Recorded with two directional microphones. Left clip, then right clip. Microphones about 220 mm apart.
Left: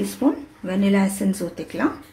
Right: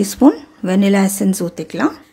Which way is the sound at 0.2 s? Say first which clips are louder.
Right 10 dB; 50° right (ahead or behind).